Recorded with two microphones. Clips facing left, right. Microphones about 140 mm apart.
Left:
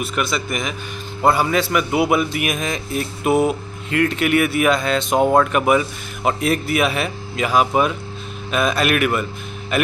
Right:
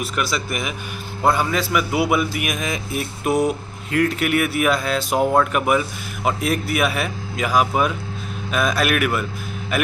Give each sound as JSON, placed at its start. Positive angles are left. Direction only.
{"t": 0.0, "sound": "a man's voice", "side_deg": 0}